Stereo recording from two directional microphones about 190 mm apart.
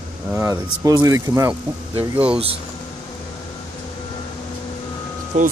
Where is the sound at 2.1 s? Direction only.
5° right (ahead or behind).